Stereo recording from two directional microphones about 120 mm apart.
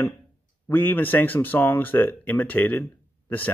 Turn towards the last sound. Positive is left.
turn(degrees=15)  # may be behind; listen again after turning